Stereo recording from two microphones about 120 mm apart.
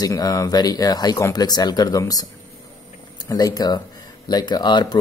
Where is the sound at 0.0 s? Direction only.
30° left (ahead or behind).